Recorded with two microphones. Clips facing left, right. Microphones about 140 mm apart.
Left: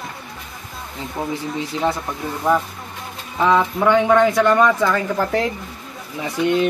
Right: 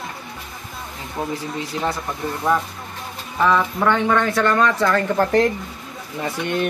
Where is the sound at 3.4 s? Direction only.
20° left (ahead or behind).